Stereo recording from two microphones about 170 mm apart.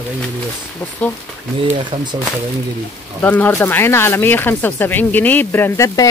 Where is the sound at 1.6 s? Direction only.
30° right (ahead or behind).